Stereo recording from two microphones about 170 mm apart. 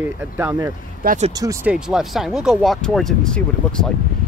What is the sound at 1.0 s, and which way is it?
Speech, 45° right (ahead or behind).